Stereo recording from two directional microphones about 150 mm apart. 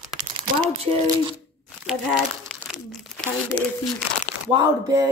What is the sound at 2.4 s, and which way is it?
Speech, centre (ahead or behind).